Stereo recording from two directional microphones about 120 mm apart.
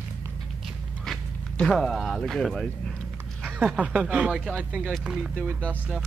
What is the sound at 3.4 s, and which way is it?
Speech, 10° right (ahead or behind).